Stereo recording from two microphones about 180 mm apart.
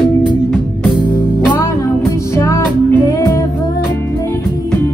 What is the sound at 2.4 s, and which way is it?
Music, 15° left (ahead or behind).